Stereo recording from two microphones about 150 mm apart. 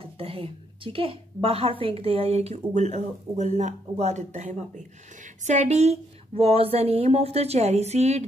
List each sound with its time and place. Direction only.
0.0 s a woman's voice: 40° right (ahead or behind)